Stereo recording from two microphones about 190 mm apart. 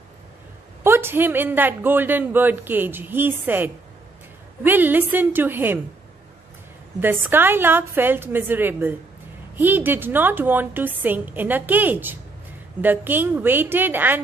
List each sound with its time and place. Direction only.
0.8 s speech: 10° right (ahead or behind)
7.0 s speech: 10° right (ahead or behind)